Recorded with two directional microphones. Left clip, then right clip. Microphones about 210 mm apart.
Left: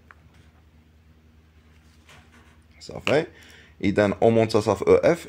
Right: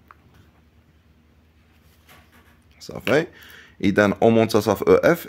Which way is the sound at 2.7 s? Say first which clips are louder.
Right 2 dB; 30° right (ahead or behind).